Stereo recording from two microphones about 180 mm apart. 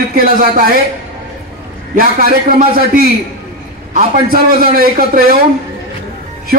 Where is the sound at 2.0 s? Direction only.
50° right (ahead or behind).